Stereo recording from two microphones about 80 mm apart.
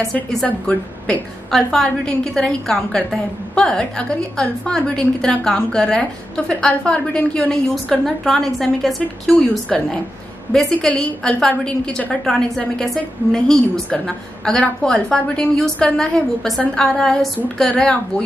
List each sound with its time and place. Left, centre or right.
0.0 s a woman's voice: centre